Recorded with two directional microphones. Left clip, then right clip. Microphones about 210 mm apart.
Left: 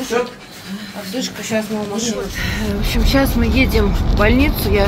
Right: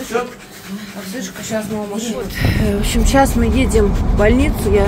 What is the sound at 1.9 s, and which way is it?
Speech, 5° right (ahead or behind).